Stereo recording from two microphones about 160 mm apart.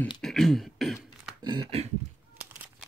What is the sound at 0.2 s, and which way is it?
Throat clearing, centre (ahead or behind).